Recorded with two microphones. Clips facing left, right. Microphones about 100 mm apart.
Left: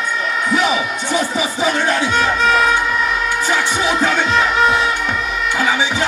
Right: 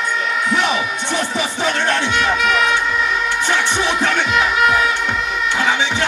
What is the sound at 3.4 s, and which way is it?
Music, 5° left (ahead or behind).